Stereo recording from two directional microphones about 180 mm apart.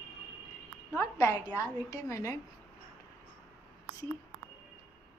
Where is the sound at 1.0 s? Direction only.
15° left (ahead or behind).